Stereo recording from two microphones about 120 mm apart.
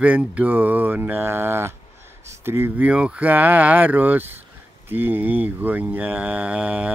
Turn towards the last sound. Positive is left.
turn(degrees=-10)  # may be behind; listen again after turning